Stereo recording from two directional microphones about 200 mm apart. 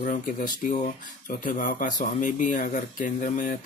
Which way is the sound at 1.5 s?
40° left (ahead or behind).